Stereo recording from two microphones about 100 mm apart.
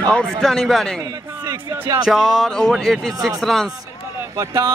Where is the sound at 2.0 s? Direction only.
Centre (ahead or behind).